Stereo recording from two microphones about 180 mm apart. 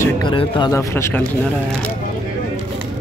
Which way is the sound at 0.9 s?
15° left (ahead or behind).